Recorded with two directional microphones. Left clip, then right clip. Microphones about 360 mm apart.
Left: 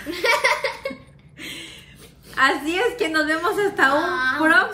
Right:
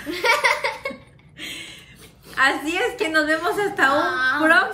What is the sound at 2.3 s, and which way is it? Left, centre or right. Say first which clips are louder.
A woman's voice: even; centre.